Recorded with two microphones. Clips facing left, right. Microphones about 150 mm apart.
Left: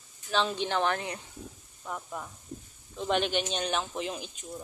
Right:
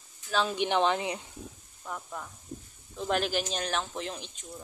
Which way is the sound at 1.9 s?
5° left (ahead or behind).